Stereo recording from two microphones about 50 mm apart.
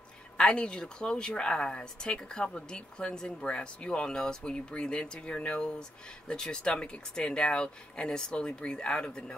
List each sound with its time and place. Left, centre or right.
0.4 s speech: centre